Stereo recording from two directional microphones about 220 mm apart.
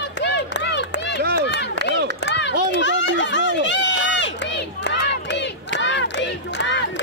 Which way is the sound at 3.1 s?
55° left (ahead or behind).